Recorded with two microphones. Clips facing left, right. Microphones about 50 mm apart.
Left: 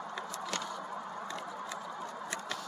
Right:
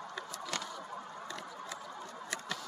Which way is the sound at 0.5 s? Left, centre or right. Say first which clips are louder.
Left 1 dB; left.